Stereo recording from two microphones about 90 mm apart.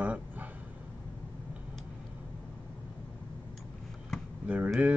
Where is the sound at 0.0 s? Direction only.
20° right (ahead or behind).